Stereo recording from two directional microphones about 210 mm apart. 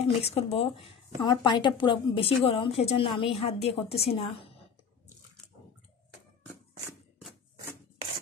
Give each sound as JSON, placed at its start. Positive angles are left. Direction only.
{"t": 0.2, "sound": "speech", "side_deg": 30}